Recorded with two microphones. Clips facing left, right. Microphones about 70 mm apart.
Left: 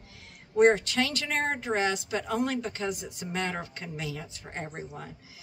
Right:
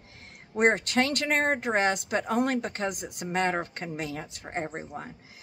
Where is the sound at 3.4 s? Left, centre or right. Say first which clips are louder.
Right 6 dB; right.